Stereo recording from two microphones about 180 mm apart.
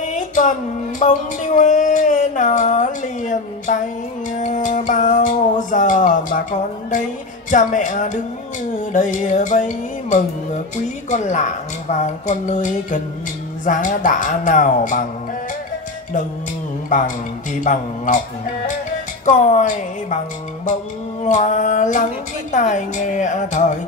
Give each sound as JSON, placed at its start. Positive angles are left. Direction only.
{"t": 0.0, "sound": "music", "side_deg": 45}
{"t": 7.5, "sound": "music", "side_deg": 45}
{"t": 11.1, "sound": "a woman's voice", "side_deg": 40}
{"t": 11.9, "sound": "music", "side_deg": 45}
{"t": 16.9, "sound": "music", "side_deg": 45}
{"t": 19.2, "sound": "music", "side_deg": 45}
{"t": 21.2, "sound": "music", "side_deg": 45}